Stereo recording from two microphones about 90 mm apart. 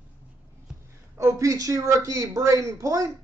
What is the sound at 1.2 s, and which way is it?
Speech, 35° right (ahead or behind).